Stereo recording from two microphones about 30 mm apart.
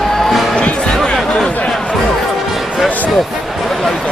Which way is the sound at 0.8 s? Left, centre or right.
Left.